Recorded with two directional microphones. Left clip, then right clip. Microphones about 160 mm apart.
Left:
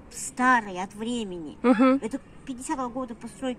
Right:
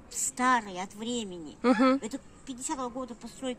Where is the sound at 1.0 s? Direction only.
30° right (ahead or behind).